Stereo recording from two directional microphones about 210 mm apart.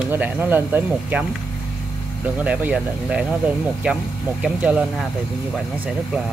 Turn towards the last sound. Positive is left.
turn(degrees=-5)  # may be behind; listen again after turning